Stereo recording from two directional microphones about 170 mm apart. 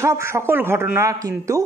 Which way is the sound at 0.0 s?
15° right (ahead or behind).